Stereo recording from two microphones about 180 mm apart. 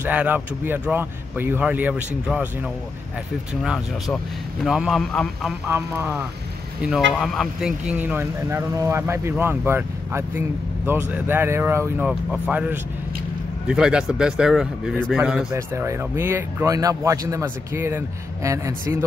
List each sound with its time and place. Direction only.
0.0 s speech: 10° right (ahead or behind)
3.6 s a man's voice: centre (ahead or behind)
5.7 s a man's voice: 15° right (ahead or behind)
15.5 s speech: 15° right (ahead or behind)